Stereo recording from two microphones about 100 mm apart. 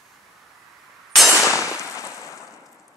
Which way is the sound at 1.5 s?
30° left (ahead or behind).